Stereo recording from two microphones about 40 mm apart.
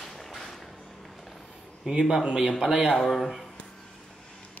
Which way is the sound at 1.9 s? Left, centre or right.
Centre.